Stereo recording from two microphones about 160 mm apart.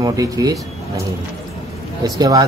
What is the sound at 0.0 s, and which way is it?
Speech, 25° right (ahead or behind).